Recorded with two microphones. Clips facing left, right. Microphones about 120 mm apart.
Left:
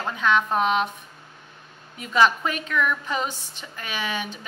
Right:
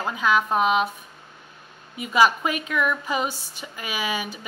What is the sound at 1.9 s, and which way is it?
A woman's voice, 10° right (ahead or behind).